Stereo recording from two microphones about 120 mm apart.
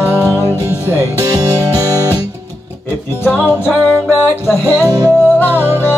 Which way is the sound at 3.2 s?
15° left (ahead or behind).